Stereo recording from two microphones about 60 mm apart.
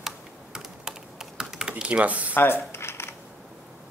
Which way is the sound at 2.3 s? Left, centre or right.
Left.